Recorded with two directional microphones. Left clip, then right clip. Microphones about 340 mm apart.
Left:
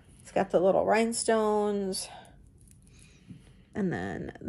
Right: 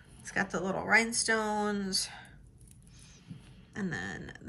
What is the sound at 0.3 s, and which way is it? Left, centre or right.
Speech, centre.